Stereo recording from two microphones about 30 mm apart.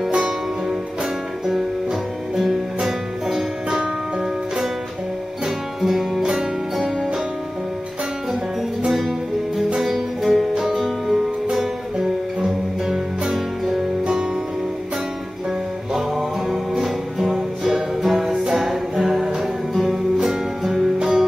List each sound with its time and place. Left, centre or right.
1.4 s music: centre
5.8 s music: centre
9.8 s music: centre
13.3 s music: centre
15.9 s music: centre
21.0 s music: right